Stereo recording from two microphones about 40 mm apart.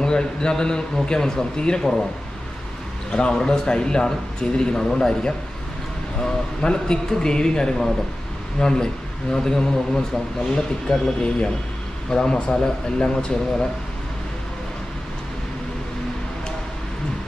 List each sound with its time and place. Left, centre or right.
0.0 s a man's voice: centre
3.1 s a man's voice: centre